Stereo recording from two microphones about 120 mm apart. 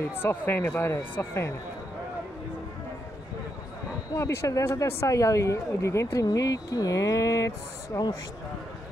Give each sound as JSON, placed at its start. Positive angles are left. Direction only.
{"t": 0.2, "sound": "speech", "side_deg": 15}
{"t": 4.1, "sound": "speech", "side_deg": 25}